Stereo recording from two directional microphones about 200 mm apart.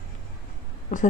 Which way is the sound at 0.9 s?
40° left (ahead or behind).